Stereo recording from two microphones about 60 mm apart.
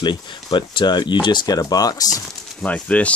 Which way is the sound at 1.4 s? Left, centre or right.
Left.